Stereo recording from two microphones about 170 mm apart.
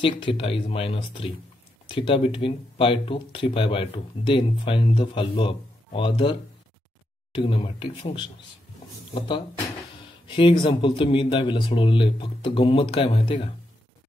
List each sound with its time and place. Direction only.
0.0 s speech: 30° left (ahead or behind)
7.3 s a man's voice: 30° left (ahead or behind)
10.2 s a man's voice: 30° left (ahead or behind)